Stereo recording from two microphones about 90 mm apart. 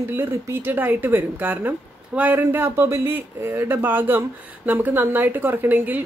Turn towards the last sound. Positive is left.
turn(degrees=-20)  # may be behind; listen again after turning